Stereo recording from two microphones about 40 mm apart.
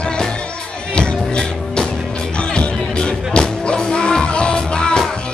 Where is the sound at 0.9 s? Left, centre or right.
Left.